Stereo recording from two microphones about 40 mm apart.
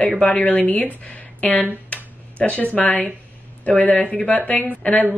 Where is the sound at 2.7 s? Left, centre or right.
Left.